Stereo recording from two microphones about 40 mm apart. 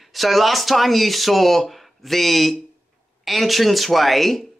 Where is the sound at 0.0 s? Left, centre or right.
Centre.